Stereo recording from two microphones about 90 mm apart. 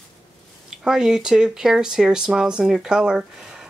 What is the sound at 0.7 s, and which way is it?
Speech, 5° right (ahead or behind).